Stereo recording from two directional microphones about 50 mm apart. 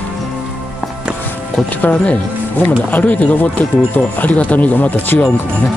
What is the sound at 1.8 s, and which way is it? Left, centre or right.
Speech, left.